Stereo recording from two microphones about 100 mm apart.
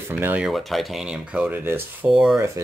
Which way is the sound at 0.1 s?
20° right (ahead or behind).